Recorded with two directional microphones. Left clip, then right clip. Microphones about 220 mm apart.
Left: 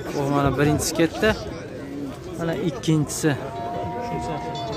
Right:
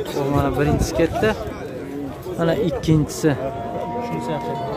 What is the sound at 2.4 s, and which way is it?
Speech, 5° right (ahead or behind).